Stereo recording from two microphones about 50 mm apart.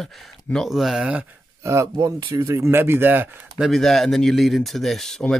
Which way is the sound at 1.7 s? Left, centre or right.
Right.